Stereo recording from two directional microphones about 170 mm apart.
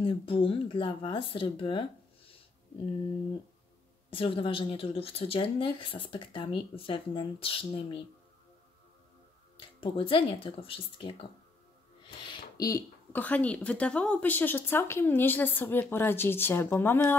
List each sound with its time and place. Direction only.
0.0 s a woman's voice: 30° left (ahead or behind)
4.1 s a woman's voice: 30° left (ahead or behind)
9.6 s a woman's voice: 30° left (ahead or behind); by 17.2 s 15° left (ahead or behind)